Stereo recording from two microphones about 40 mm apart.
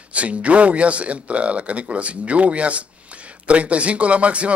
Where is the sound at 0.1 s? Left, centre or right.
Right.